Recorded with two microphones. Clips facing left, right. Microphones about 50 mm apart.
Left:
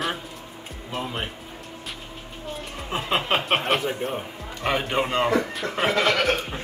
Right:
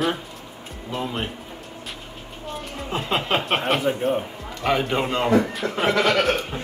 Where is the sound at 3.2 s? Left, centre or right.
Centre.